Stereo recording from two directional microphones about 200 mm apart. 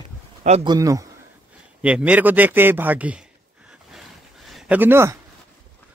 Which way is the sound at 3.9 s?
Centre (ahead or behind).